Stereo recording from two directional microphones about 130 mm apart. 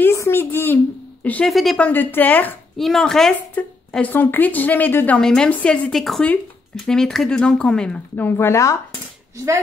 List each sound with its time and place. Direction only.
0.0 s a sound: 20° left (ahead or behind)
1.2 s speech: 10° left (ahead or behind)
1.5 s speech: centre (ahead or behind)
1.8 s a woman's voice: 15° left (ahead or behind)
2.8 s a woman's voice: centre (ahead or behind); by 8.7 s 20° left (ahead or behind)